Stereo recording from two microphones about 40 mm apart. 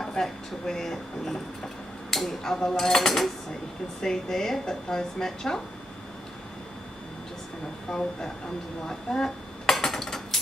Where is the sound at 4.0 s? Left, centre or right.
Centre.